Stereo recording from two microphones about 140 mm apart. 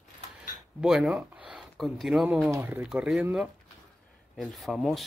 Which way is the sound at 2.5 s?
15° right (ahead or behind).